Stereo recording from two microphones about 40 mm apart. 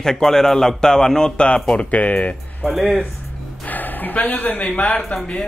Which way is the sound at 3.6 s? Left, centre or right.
Left.